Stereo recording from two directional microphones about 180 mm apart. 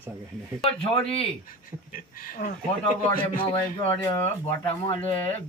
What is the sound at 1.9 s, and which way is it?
Speech, 50° left (ahead or behind).